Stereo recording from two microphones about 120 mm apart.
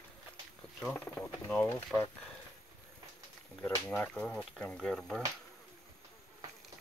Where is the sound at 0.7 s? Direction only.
10° left (ahead or behind).